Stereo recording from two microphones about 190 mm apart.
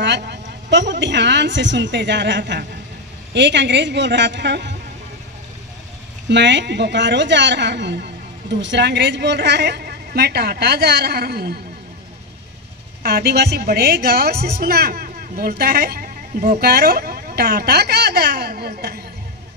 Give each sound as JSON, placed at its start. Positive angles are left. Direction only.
{"t": 0.0, "sound": "a woman's voice", "side_deg": -65}
{"t": 6.2, "sound": "a woman's voice", "side_deg": -70}
{"t": 13.0, "sound": "a woman's voice", "side_deg": -55}